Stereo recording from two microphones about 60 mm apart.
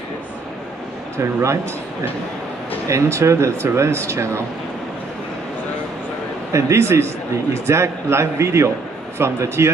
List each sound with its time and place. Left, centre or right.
1.1 s speech: right
2.9 s speech: right
6.5 s speech: right